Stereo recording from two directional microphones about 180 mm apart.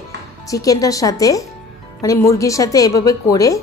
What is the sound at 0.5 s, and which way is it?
A woman's voice, 20° left (ahead or behind).